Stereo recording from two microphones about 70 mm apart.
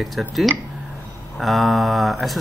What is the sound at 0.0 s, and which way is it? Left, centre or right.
Speech, centre.